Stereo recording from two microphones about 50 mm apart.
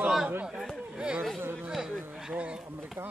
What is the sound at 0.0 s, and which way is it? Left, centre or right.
Chatter, centre.